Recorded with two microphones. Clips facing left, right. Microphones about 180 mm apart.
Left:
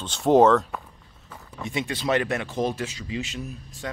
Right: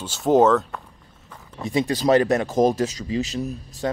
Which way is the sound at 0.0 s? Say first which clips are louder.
Even; centre (ahead or behind).